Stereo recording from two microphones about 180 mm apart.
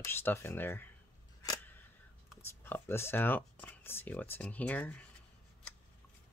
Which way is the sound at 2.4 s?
10° left (ahead or behind).